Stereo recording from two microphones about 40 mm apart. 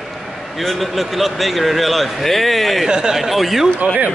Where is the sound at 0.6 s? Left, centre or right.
Centre.